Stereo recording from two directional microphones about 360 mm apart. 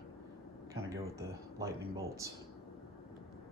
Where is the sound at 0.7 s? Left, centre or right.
Centre.